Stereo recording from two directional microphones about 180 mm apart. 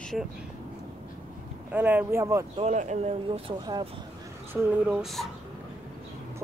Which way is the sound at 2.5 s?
40° right (ahead or behind).